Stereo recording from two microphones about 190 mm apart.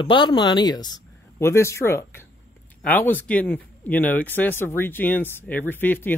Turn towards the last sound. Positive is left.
turn(degrees=10)  # may be behind; listen again after turning